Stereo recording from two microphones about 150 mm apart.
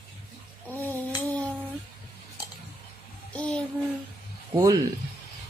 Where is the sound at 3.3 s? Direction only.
10° left (ahead or behind).